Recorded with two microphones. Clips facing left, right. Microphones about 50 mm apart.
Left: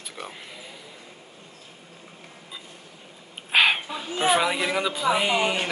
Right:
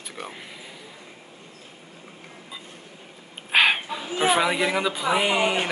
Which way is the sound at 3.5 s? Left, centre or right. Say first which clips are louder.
Right 1 dB; centre.